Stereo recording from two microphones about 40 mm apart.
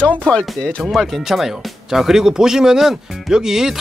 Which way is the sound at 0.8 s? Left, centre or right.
Centre.